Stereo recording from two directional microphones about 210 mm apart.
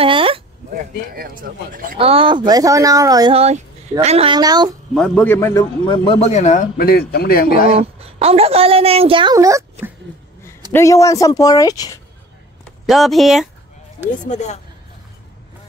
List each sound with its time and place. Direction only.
0.0 s a sound: 25° right (ahead or behind)
1.1 s speech: 40° right (ahead or behind)
2.0 s a woman's voice: 25° right (ahead or behind)
4.9 s a man's voice: 5° left (ahead or behind); by 7.7 s 45° left (ahead or behind)
7.7 s a woman's voice: 30° right (ahead or behind); by 9.9 s 10° right (ahead or behind)
10.7 s speech: 15° left (ahead or behind)
12.8 s speech: centre (ahead or behind)
14.2 s a man's voice: 35° left (ahead or behind)